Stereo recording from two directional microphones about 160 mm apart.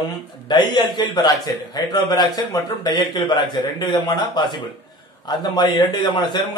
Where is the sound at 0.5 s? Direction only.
30° left (ahead or behind).